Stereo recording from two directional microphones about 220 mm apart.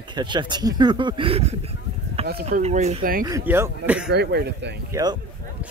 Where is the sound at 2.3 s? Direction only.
40° right (ahead or behind).